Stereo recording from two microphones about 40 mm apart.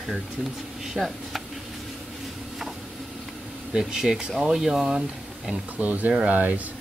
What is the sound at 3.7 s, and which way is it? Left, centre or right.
Speech, centre.